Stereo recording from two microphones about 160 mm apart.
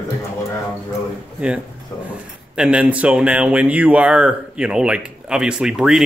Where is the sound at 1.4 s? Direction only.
10° right (ahead or behind).